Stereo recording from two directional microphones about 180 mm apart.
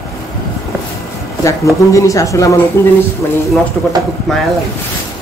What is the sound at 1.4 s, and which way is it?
Speech, 15° left (ahead or behind).